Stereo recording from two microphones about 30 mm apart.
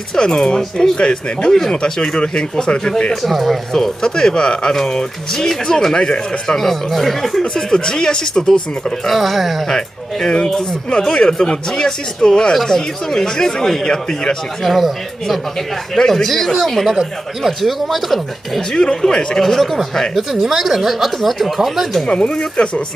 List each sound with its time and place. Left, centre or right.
0.2 s speech: left
3.2 s speech: centre
4.0 s speech: left
6.5 s speech: centre
7.5 s speech: left
9.0 s speech: centre
9.7 s speech: left
14.6 s speech: centre
15.9 s speech: centre
18.7 s speech: left
19.4 s speech: centre
20.2 s speech: centre
22.0 s speech: left